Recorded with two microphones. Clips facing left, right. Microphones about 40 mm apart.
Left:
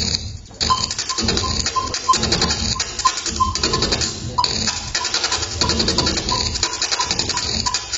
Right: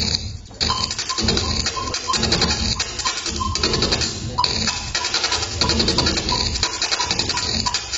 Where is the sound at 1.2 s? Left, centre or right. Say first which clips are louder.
Even; centre.